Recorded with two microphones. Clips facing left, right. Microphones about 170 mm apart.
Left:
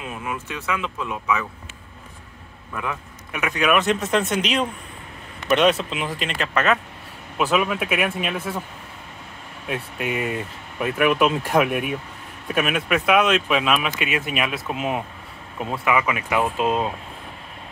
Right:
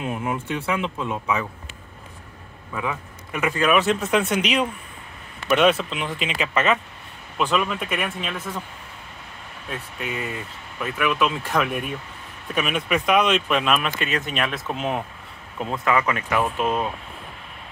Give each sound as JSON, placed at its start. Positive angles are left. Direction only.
{"t": 0.0, "sound": "speech", "side_deg": -30}
{"t": 2.7, "sound": "a man's voice", "side_deg": -5}
{"t": 4.1, "sound": "speech", "side_deg": -10}
{"t": 9.7, "sound": "speech", "side_deg": 10}
{"t": 10.8, "sound": "speech", "side_deg": 50}
{"t": 11.5, "sound": "speech", "side_deg": 10}